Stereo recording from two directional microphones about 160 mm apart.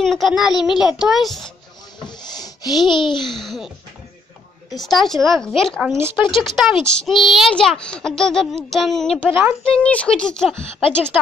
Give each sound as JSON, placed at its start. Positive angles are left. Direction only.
{"t": 0.0, "sound": "a child's voice", "side_deg": 0}
{"t": 2.0, "sound": "wood", "side_deg": 25}
{"t": 2.9, "sound": "a child's voice", "side_deg": 30}
{"t": 3.3, "sound": "a child's voice", "side_deg": 0}
{"t": 4.7, "sound": "a child's voice", "side_deg": 0}
{"t": 9.3, "sound": "speech", "side_deg": -15}
{"t": 9.7, "sound": "a child's voice", "side_deg": 5}